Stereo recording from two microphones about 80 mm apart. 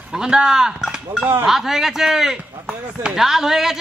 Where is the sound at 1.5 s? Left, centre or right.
Centre.